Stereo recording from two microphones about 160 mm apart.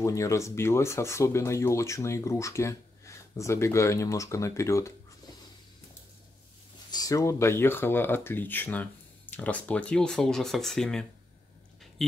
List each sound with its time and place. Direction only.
0.0 s speech: 20° left (ahead or behind)
6.9 s speech: 20° left (ahead or behind); by 12.1 s centre (ahead or behind)